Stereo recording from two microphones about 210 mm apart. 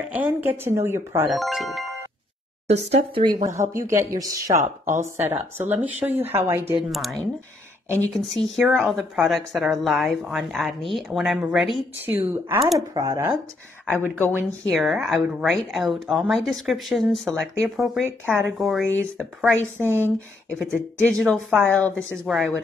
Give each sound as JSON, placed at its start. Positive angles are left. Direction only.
{"t": 0.1, "sound": "speech", "side_deg": -10}
{"t": 1.3, "sound": "speech", "side_deg": 0}
{"t": 2.7, "sound": "speech", "side_deg": -30}
{"t": 3.4, "sound": "speech", "side_deg": -15}
{"t": 8.1, "sound": "a woman's voice", "side_deg": 0}
{"t": 19.6, "sound": "speech", "side_deg": -10}
{"t": 20.4, "sound": "a woman's voice", "side_deg": 5}